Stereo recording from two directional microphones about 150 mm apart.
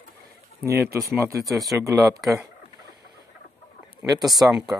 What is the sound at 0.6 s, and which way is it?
Speech, 20° right (ahead or behind).